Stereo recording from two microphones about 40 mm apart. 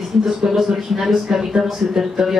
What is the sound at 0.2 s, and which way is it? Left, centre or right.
Speech, centre.